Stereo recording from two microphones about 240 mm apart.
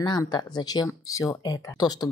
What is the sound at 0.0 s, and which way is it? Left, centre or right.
A woman's voice, centre.